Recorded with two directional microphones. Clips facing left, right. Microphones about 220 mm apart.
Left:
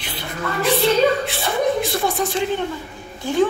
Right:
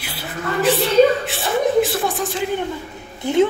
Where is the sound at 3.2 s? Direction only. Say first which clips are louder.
Right 3 dB; 20° right (ahead or behind).